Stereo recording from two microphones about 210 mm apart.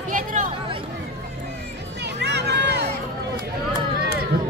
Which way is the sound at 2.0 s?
55° right (ahead or behind).